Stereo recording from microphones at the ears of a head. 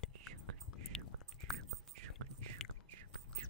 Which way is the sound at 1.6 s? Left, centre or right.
Right.